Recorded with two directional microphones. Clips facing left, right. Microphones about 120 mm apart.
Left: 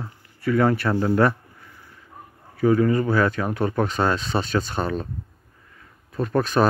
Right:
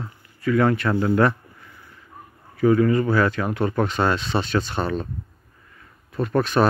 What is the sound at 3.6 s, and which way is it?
Speech, 10° left (ahead or behind).